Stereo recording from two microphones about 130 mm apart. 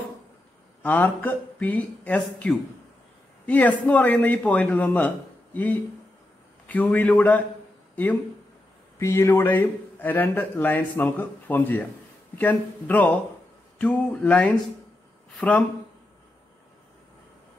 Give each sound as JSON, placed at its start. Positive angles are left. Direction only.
{"t": 0.8, "sound": "a man's voice", "side_deg": 15}